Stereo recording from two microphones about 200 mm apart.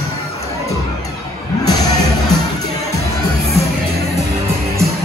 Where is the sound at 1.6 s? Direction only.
20° left (ahead or behind).